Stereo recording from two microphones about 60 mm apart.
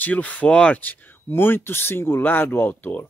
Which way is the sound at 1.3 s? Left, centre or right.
Left.